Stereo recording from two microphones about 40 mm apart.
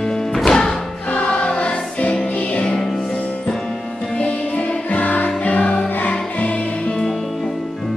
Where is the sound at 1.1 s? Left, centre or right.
Left.